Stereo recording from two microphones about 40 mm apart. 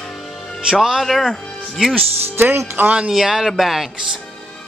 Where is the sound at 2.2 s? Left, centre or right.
Right.